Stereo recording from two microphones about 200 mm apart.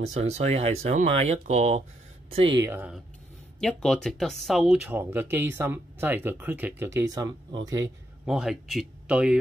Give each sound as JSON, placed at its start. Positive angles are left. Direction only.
{"t": 0.0, "sound": "speech", "side_deg": -35}
{"t": 2.7, "sound": "speech", "side_deg": -5}
{"t": 8.3, "sound": "speech", "side_deg": 0}